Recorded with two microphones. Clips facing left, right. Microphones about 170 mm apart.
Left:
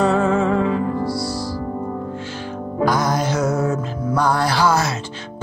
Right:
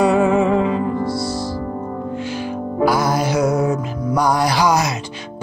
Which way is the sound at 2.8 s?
10° right (ahead or behind).